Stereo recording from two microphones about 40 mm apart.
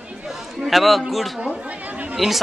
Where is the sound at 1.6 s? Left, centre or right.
Right.